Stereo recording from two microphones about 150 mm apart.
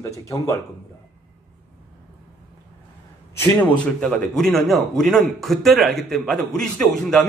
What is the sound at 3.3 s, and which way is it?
A man's voice, 5° left (ahead or behind).